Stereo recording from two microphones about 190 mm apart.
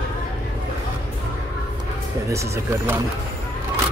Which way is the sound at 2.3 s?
15° right (ahead or behind).